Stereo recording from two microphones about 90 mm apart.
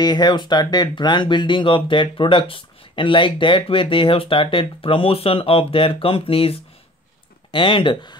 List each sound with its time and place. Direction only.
0.0 s speech: 55° left (ahead or behind); by 6.6 s 90° left
7.5 s speech: 70° left (ahead or behind)